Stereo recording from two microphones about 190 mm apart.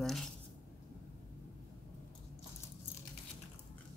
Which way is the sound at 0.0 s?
Centre (ahead or behind).